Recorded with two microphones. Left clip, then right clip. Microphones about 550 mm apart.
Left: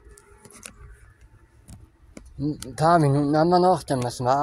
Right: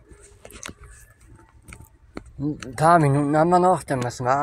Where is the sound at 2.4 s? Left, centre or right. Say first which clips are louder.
Right 2 dB; left.